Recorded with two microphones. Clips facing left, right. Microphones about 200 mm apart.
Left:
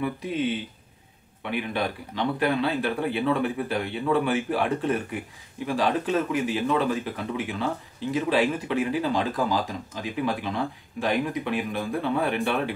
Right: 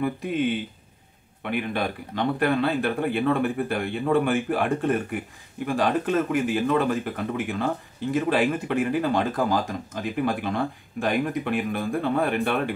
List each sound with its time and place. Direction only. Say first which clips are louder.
1.4 s speech: right 1 dB; 50° right (ahead or behind)